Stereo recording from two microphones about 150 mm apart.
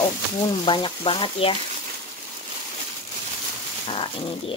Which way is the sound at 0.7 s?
35° left (ahead or behind).